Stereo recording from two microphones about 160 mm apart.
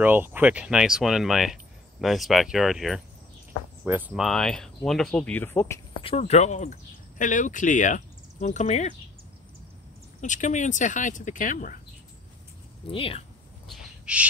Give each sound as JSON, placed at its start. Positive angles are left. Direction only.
{"t": 0.0, "sound": "speech", "side_deg": -10}
{"t": 3.8, "sound": "speech", "side_deg": -10}
{"t": 4.2, "sound": "speech", "side_deg": 0}
{"t": 5.9, "sound": "speech", "side_deg": 35}
{"t": 10.2, "sound": "speech", "side_deg": 50}
{"t": 12.9, "sound": "speech", "side_deg": 35}
{"t": 13.7, "sound": "owl", "side_deg": -5}